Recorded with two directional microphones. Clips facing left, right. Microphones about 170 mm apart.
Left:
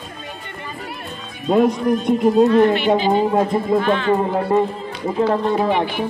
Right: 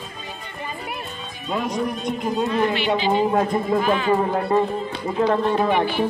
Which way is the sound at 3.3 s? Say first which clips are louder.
Left 3 dB; 20° left (ahead or behind).